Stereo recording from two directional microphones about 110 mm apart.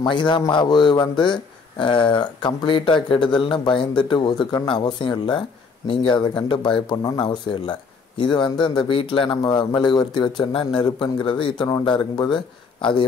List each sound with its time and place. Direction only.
0.0 s speech: 45° left (ahead or behind)
9.4 s speech: 35° left (ahead or behind)